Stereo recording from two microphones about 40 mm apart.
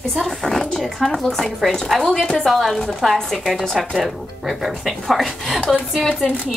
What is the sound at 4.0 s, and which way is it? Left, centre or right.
Speech, centre.